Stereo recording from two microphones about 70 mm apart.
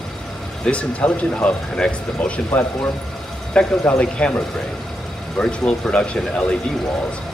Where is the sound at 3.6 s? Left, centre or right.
Centre.